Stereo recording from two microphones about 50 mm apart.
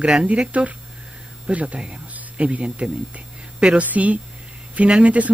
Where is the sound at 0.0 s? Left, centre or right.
Right.